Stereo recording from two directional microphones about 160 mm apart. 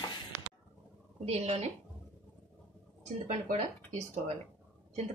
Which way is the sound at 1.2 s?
40° right (ahead or behind).